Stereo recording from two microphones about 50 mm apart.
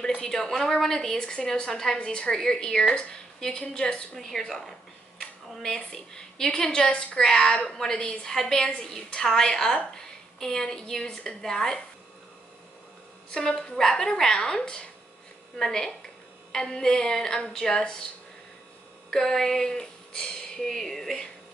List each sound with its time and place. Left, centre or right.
0.0 s a woman's voice: centre
4.2 s a woman's voice: centre
13.3 s a woman's voice: centre
19.0 s speech: centre